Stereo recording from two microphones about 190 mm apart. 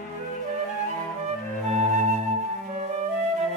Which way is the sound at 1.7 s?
35° right (ahead or behind).